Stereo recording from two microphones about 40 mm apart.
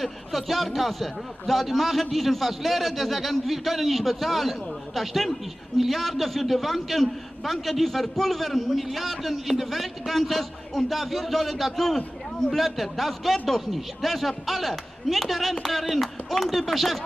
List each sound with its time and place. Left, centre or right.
0.0 s a man's voice: centre